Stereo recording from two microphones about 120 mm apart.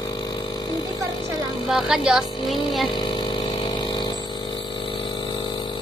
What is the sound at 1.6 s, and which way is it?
A woman's voice, 5° right (ahead or behind).